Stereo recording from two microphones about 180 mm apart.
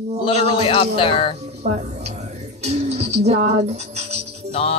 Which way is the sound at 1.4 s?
35° right (ahead or behind).